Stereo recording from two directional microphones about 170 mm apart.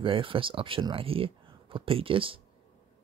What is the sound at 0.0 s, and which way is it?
Speech, 30° right (ahead or behind).